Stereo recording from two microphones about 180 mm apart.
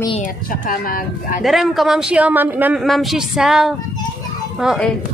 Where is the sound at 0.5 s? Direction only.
50° left (ahead or behind).